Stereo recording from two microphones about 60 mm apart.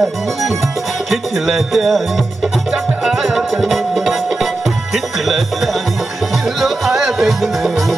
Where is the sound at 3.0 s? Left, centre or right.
Centre.